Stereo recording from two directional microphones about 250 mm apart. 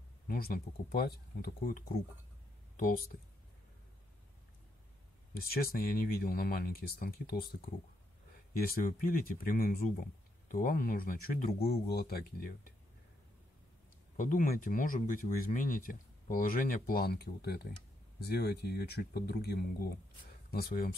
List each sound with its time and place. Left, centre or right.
0.3 s speech: left
5.3 s speech: left
8.5 s speech: left
14.1 s speech: left